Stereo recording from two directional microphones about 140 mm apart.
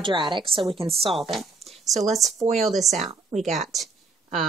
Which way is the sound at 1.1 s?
Centre (ahead or behind).